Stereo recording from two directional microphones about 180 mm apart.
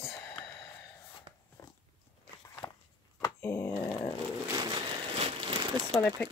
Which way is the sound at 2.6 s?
20° left (ahead or behind).